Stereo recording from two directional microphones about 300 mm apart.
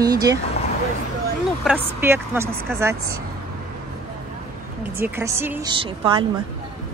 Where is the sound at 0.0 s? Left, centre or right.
Centre.